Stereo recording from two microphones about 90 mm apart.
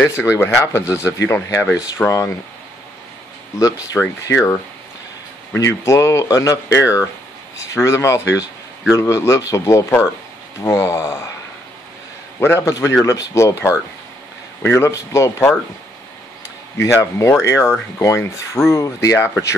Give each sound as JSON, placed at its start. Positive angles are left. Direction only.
{"t": 0.0, "sound": "speech", "side_deg": 30}
{"t": 4.2, "sound": "speech", "side_deg": 35}
{"t": 5.6, "sound": "speech", "side_deg": 35}
{"t": 12.4, "sound": "a man's voice", "side_deg": 25}
{"t": 12.6, "sound": "speech", "side_deg": 35}
{"t": 16.7, "sound": "speech", "side_deg": 35}